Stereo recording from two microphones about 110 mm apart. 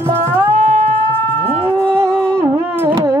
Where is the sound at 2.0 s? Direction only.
20° right (ahead or behind).